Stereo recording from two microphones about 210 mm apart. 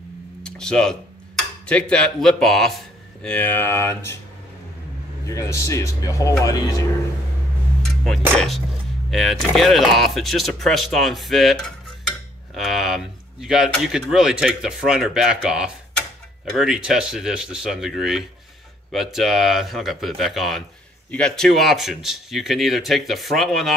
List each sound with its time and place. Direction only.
0.4 s a sound: 5° left (ahead or behind)
1.7 s speech: 5° left (ahead or behind)
5.2 s speech: 15° left (ahead or behind)
7.8 s speech: centre (ahead or behind)